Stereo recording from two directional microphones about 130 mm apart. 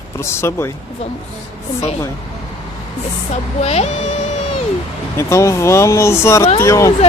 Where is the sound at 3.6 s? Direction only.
55° left (ahead or behind).